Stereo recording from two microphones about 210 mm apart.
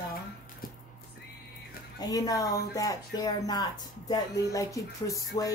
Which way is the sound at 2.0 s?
15° left (ahead or behind).